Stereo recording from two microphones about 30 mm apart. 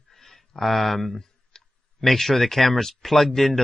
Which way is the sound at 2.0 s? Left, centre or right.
Centre.